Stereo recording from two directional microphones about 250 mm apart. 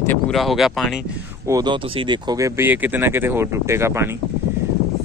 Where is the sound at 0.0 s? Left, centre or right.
Centre.